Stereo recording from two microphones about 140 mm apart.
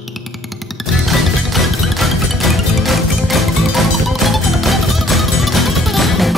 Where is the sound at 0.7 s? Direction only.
Centre (ahead or behind).